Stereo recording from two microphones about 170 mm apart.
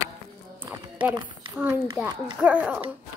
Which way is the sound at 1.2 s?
25° right (ahead or behind).